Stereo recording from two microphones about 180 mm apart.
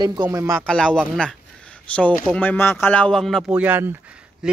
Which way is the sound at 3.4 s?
10° right (ahead or behind).